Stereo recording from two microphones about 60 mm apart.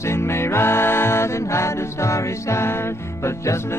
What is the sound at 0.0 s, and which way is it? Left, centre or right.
Music, left.